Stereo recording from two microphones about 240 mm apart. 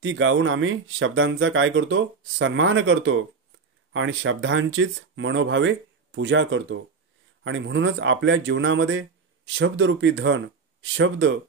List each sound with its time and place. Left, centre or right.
0.0 s speech: right